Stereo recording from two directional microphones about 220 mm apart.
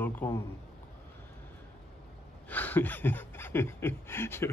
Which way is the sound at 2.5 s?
10° left (ahead or behind).